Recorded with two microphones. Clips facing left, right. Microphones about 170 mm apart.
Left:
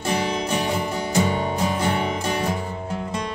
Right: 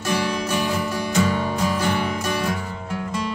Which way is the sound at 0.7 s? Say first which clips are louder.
Even; 25° left (ahead or behind).